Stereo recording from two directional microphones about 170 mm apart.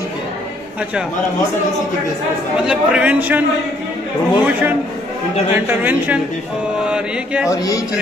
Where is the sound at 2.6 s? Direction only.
5° right (ahead or behind).